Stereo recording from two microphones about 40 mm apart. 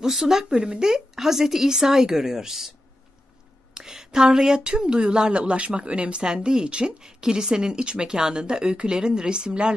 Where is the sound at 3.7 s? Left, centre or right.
Centre.